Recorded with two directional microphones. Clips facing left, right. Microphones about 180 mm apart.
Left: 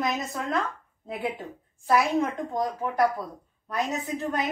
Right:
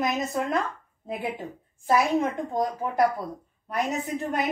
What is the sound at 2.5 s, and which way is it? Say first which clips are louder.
Speech: right 1 dB; 20° right (ahead or behind).